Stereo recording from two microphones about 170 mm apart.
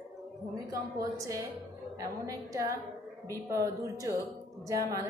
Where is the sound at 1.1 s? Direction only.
20° right (ahead or behind).